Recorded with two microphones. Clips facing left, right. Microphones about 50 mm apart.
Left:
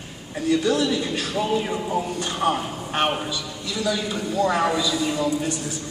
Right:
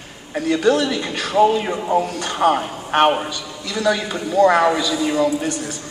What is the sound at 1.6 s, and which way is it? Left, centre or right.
Speech, right.